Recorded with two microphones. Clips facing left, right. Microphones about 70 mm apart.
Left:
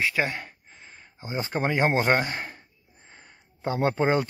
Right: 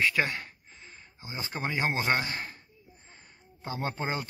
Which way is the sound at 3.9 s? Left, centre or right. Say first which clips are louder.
Left 10 dB; left.